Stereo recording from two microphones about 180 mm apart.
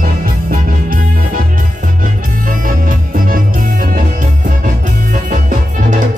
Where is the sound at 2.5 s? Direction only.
50° right (ahead or behind).